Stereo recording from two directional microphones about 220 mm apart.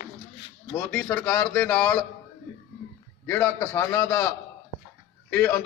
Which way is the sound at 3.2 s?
10° left (ahead or behind).